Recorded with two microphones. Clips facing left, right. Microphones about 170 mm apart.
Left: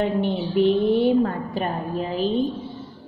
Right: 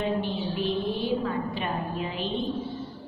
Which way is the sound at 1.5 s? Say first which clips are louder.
Left 5 dB; 40° left (ahead or behind).